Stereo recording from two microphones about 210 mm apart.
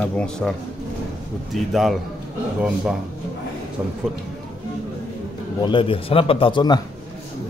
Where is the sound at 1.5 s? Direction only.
Centre (ahead or behind).